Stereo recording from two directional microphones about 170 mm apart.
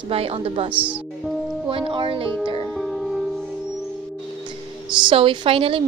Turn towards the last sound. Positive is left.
turn(degrees=-35)  # may be behind; listen again after turning